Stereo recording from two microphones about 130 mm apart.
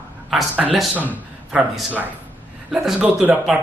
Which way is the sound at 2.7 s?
10° right (ahead or behind).